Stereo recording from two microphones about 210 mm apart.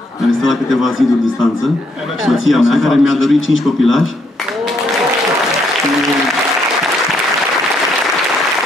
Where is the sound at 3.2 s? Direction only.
70° left (ahead or behind).